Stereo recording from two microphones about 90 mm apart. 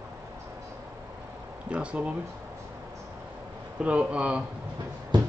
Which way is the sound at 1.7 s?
15° right (ahead or behind).